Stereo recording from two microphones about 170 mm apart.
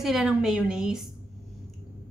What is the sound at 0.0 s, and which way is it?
A woman's voice, 5° right (ahead or behind).